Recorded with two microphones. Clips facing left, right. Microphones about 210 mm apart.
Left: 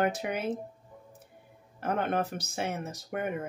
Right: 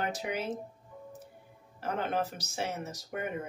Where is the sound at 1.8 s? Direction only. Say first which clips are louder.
Left 3 dB; 55° left (ahead or behind).